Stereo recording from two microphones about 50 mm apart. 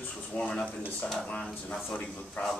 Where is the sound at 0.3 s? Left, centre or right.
Left.